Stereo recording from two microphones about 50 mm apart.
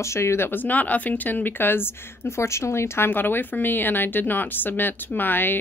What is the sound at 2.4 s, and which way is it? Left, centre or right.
Speech, left.